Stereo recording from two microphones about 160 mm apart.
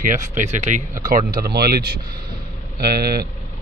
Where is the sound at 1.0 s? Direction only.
65° right (ahead or behind).